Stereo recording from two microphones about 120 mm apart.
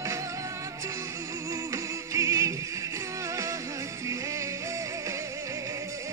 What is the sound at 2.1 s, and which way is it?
Music, 25° right (ahead or behind).